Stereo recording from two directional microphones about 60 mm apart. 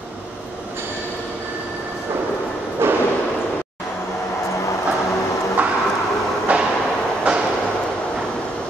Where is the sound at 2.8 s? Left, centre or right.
Right.